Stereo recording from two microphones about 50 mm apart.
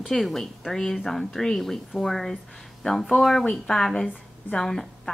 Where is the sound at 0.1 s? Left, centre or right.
Centre.